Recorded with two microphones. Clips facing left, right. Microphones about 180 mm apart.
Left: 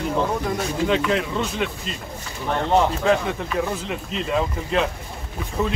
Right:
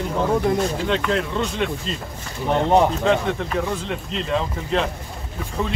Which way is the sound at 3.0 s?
5° left (ahead or behind).